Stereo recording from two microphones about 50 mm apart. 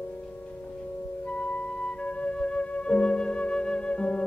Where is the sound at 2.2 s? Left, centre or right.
Left.